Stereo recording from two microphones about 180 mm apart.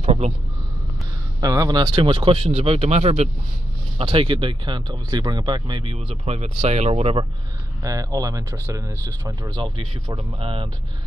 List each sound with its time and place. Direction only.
0.0 s a sound: 35° right (ahead or behind)
1.4 s speech: 20° right (ahead or behind)
7.8 s speech: 20° right (ahead or behind)